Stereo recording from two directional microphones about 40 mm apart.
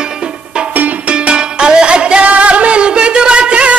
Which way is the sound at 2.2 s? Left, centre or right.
Right.